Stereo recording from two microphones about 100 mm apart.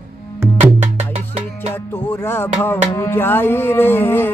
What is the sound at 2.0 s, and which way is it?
Music, 20° left (ahead or behind).